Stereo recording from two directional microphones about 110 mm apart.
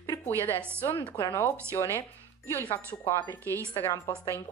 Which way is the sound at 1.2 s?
25° left (ahead or behind).